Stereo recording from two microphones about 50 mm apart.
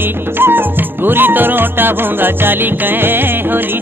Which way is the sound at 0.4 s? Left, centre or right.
Right.